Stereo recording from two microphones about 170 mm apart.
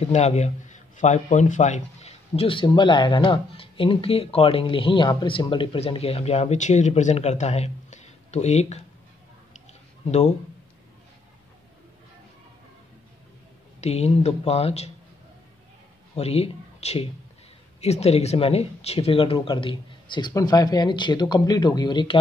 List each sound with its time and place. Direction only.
0.0 s a man's voice: 40° left (ahead or behind)
9.7 s a sound: 40° left (ahead or behind)
13.7 s a man's voice: 40° left (ahead or behind)
16.2 s a man's voice: 35° left (ahead or behind)